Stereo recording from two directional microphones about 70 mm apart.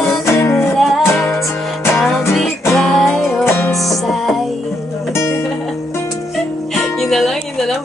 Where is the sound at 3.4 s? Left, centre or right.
Left.